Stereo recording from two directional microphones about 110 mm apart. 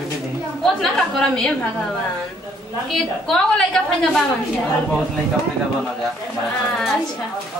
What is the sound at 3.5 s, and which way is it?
Speech, 5° left (ahead or behind).